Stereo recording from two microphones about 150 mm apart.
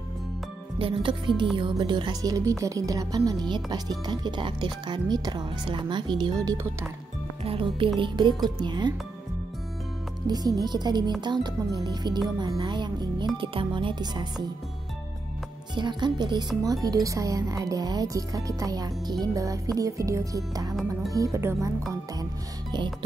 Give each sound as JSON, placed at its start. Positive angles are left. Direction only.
{"t": 0.7, "sound": "music", "side_deg": -35}
{"t": 1.6, "sound": "a woman's voice", "side_deg": -30}
{"t": 7.4, "sound": "music", "side_deg": -35}
{"t": 8.5, "sound": "a woman's voice", "side_deg": -30}
{"t": 10.2, "sound": "a woman's voice", "side_deg": -25}
{"t": 13.4, "sound": "music", "side_deg": -35}
{"t": 15.7, "sound": "a woman's voice", "side_deg": -30}